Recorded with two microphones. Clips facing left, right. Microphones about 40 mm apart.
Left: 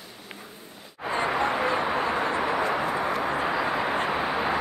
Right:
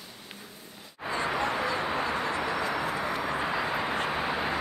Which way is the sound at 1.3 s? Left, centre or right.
Centre.